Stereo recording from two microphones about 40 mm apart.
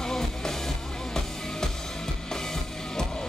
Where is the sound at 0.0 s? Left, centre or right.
Centre.